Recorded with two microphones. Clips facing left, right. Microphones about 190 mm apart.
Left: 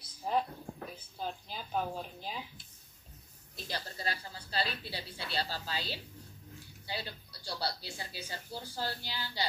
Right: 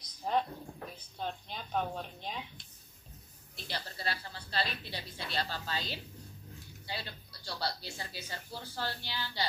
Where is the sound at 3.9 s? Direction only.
40° left (ahead or behind).